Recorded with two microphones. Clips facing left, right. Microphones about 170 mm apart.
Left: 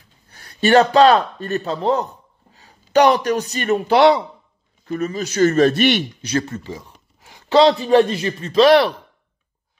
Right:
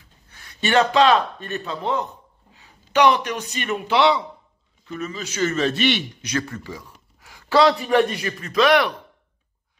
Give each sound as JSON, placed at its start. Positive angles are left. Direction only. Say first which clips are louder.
{"t": 0.3, "sound": "a man's voice", "louder": "left 7 dB", "side_deg": 40}
{"t": 6.2, "sound": "a man's voice", "louder": "left 4 dB", "side_deg": 25}